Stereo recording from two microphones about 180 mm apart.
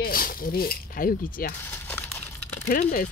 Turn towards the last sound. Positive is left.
turn(degrees=55)  # may be behind; listen again after turning